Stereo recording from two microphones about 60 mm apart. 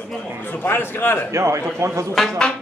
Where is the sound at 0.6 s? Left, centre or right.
Left.